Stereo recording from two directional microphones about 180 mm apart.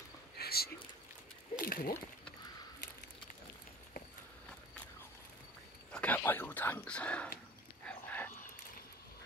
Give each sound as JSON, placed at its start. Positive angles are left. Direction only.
{"t": 0.4, "sound": "a sound", "side_deg": 60}
{"t": 5.9, "sound": "speech", "side_deg": 10}
{"t": 7.8, "sound": "dog", "side_deg": 10}